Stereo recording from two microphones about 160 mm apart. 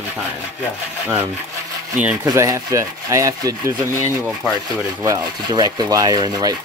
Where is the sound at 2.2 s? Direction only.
20° right (ahead or behind).